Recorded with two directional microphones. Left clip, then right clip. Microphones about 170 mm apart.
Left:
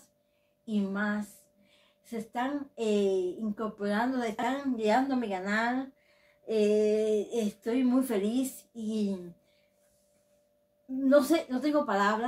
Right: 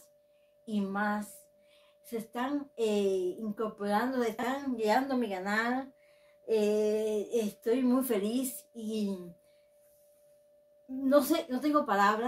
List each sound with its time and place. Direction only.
0.7 s speech: 20° right (ahead or behind)
11.1 s speech: 20° right (ahead or behind)